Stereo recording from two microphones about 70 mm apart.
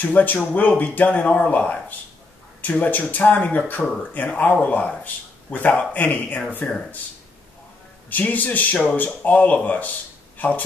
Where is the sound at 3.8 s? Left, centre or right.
Centre.